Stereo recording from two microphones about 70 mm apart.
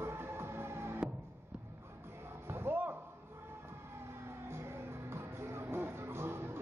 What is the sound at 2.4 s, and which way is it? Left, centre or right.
Slam, right.